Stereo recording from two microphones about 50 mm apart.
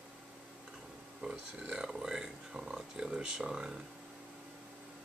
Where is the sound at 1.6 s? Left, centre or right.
Centre.